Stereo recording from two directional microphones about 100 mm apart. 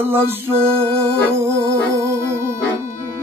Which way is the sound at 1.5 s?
30° right (ahead or behind).